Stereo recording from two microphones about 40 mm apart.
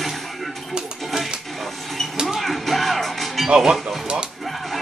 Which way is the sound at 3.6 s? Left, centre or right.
Centre.